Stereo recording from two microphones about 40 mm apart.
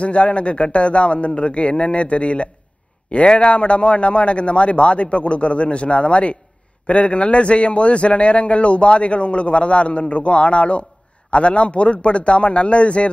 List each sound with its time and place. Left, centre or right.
0.0 s a man's voice: left